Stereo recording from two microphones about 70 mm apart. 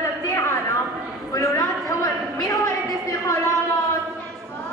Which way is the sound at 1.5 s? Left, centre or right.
Left.